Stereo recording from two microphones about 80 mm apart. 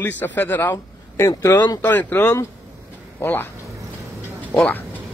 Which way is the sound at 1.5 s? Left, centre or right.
Left.